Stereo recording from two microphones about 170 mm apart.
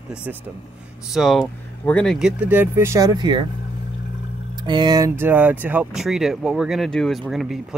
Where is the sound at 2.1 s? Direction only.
5° right (ahead or behind); by 3.4 s 25° right (ahead or behind).